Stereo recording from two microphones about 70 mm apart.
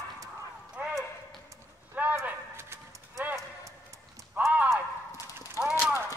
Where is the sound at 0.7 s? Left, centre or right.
Centre.